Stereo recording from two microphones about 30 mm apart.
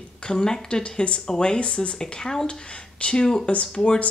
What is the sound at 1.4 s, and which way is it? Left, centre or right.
Speech, left.